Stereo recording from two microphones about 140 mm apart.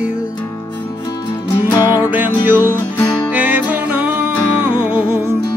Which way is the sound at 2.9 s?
20° left (ahead or behind).